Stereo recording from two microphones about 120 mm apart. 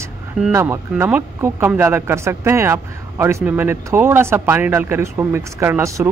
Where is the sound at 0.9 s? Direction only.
10° right (ahead or behind).